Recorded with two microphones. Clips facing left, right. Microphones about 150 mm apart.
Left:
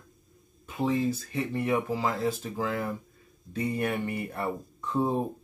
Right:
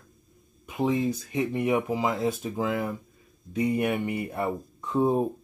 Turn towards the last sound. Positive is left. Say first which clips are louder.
# right 4 dB
turn(degrees=-15)  # may be behind; listen again after turning